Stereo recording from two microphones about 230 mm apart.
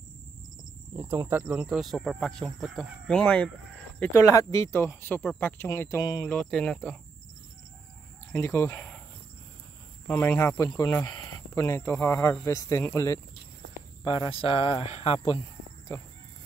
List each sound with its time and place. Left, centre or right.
0.9 s speech: centre
6.2 s speech: centre
8.3 s speech: centre
10.0 s speech: centre
14.0 s speech: left